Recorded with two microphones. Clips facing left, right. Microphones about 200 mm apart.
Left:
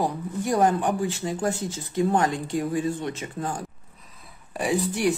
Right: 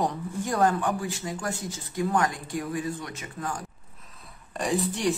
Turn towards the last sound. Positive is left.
turn(degrees=5)  # may be behind; listen again after turning